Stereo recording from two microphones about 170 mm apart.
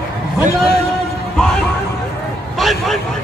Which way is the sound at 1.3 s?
5° left (ahead or behind).